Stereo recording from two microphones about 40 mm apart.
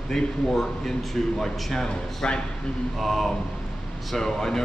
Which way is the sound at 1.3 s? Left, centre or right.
Centre.